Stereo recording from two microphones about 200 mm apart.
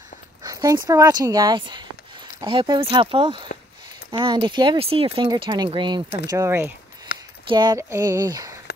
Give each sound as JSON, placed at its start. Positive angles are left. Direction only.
{"t": 0.4, "sound": "speech", "side_deg": -20}